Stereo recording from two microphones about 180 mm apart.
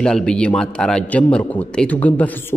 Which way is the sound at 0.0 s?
5° left (ahead or behind).